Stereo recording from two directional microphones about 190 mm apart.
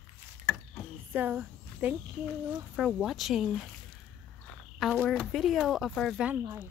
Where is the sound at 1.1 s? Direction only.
10° right (ahead or behind).